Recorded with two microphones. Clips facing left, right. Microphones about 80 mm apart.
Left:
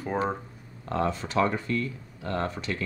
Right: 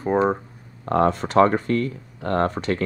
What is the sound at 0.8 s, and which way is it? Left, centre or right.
Speech, right.